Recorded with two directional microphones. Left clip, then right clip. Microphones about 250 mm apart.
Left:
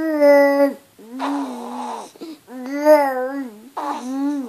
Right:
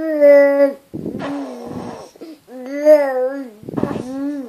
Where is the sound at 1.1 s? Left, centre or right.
Centre.